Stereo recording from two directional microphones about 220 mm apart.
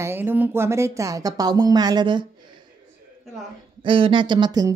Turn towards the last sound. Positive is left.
turn(degrees=-20)  # may be behind; listen again after turning